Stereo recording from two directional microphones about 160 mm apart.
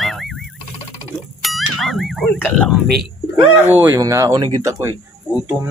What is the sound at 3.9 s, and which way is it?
Speech, 20° right (ahead or behind).